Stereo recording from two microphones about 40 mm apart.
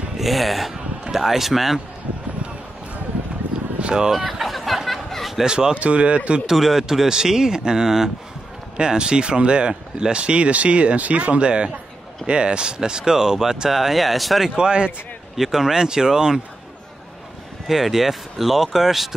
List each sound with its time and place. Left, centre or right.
0.2 s speech: centre
3.8 s speech: centre
4.1 s a sound: centre
5.4 s speech: centre
5.8 s speech: right
6.4 s speech: centre
14.6 s speech: right
15.3 s speech: centre
17.6 s speech: centre